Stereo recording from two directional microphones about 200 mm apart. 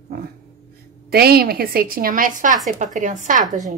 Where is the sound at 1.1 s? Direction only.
50° right (ahead or behind).